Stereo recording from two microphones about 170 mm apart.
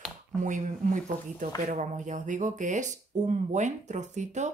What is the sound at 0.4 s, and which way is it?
Speech, 45° right (ahead or behind).